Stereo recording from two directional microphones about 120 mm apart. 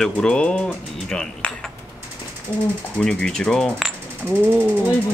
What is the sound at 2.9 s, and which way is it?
Speech, 10° left (ahead or behind).